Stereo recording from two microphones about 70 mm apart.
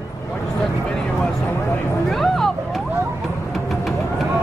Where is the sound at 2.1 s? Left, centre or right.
Centre.